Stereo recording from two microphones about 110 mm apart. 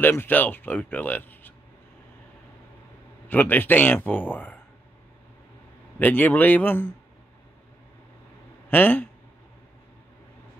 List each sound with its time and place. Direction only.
0.0 s speech: 15° left (ahead or behind)
3.3 s speech: 15° left (ahead or behind)
5.9 s speech: 15° left (ahead or behind)
8.6 s speech: 15° left (ahead or behind)